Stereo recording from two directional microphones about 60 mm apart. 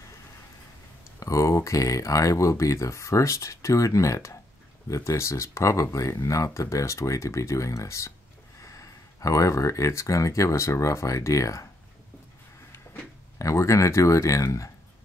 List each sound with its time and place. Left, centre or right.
1.2 s speech: left
13.4 s speech: left